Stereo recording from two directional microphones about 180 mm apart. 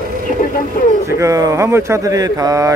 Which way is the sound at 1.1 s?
20° right (ahead or behind).